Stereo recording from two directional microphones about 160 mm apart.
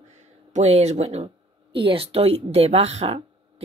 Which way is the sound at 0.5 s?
45° right (ahead or behind).